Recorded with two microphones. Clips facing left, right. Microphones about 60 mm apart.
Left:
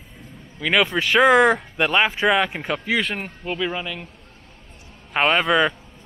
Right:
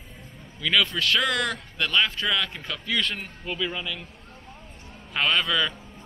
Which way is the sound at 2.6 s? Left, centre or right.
Centre.